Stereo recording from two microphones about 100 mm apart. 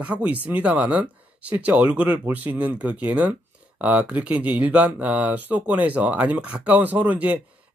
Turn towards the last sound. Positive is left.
turn(degrees=-15)  # may be behind; listen again after turning